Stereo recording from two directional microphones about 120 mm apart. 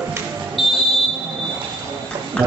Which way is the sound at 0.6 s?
Centre (ahead or behind).